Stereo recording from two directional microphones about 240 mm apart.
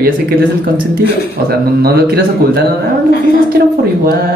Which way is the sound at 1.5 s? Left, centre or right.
Right.